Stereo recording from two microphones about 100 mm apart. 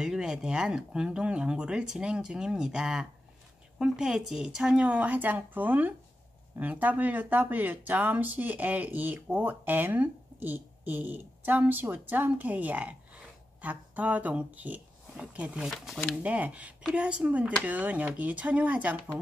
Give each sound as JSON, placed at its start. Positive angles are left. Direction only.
{"t": 0.0, "sound": "speech", "side_deg": -5}
{"t": 15.7, "sound": "speech", "side_deg": 0}
{"t": 16.2, "sound": "speech", "side_deg": -15}